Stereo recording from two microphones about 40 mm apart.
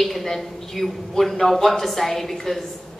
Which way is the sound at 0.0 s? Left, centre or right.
Centre.